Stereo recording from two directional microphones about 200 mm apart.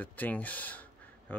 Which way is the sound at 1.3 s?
10° left (ahead or behind).